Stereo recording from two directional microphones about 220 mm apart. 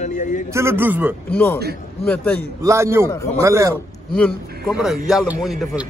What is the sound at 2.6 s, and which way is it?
Speech, 15° right (ahead or behind).